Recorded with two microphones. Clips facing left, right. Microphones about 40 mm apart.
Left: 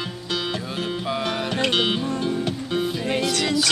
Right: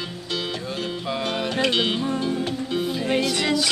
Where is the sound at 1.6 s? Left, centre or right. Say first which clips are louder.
Left 1 dB; left.